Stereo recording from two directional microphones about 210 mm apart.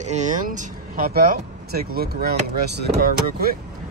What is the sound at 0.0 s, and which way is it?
Speech, 35° right (ahead or behind).